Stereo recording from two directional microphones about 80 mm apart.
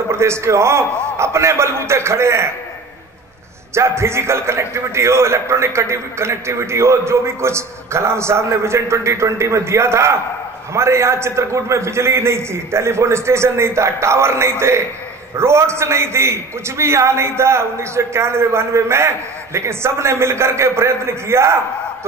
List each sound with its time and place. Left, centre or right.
0.1 s a man's voice: right
3.7 s a man's voice: right